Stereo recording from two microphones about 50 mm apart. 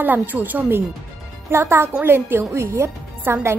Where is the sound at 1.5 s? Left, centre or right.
Right.